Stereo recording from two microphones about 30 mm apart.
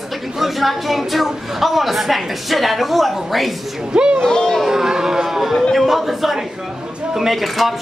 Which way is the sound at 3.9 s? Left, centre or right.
Right.